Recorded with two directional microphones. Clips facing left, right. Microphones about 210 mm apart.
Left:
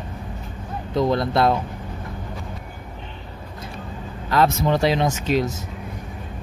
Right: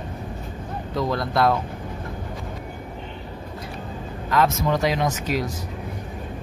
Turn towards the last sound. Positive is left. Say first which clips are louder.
# left 3 dB
turn(degrees=25)  # may be behind; listen again after turning